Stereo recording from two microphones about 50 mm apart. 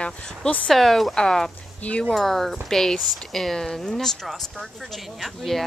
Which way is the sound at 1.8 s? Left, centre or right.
Left.